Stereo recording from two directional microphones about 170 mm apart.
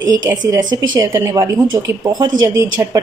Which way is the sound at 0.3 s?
20° right (ahead or behind).